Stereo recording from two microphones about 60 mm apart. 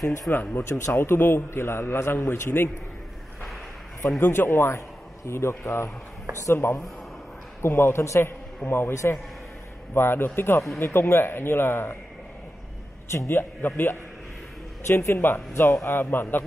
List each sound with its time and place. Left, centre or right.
0.3 s a man's voice: left
0.7 s a man's voice: left
4.2 s a man's voice: left
8.9 s a man's voice: left
9.9 s a man's voice: left
13.3 s a man's voice: left
15.7 s a man's voice: left
16.0 s a man's voice: left